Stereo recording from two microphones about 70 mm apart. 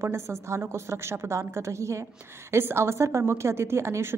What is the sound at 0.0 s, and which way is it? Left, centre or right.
A woman's voice, right.